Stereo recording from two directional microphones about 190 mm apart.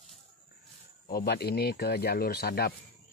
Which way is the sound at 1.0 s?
55° left (ahead or behind).